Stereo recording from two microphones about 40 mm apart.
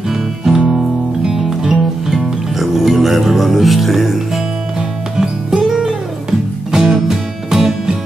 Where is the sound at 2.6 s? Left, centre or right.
Centre.